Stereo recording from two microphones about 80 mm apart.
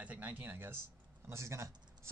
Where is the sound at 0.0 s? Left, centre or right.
Centre.